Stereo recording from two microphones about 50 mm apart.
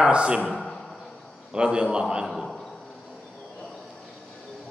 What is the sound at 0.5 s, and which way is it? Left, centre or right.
Speech, centre.